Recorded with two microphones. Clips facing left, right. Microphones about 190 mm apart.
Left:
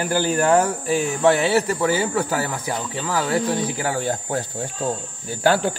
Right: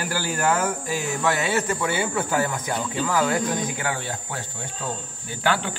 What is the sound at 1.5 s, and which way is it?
Speech, 35° left (ahead or behind).